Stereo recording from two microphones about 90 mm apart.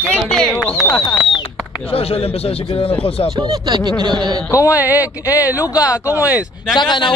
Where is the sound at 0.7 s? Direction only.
40° left (ahead or behind).